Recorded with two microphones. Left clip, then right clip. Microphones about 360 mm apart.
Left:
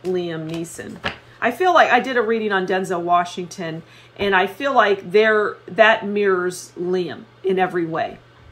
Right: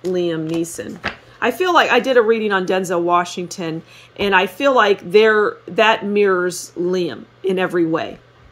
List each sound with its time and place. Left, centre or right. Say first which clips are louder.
0.1 s speech: right 4 dB; right